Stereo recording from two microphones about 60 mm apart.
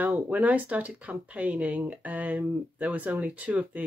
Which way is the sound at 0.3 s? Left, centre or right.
Right.